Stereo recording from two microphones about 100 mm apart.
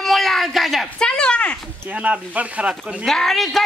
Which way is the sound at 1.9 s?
15° right (ahead or behind).